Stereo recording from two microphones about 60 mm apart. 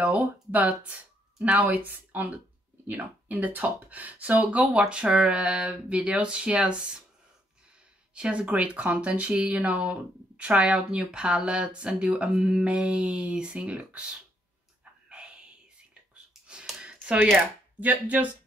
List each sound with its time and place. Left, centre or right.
0.0 s speech: right
8.1 s speech: centre
15.0 s whispering: centre
16.3 s a sound: centre
16.8 s a sound: centre
18.0 s speech: right